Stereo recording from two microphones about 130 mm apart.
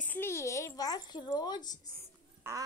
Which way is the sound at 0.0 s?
15° left (ahead or behind).